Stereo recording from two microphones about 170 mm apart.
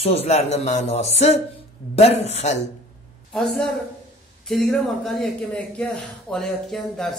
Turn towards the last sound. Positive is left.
turn(degrees=5)  # may be behind; listen again after turning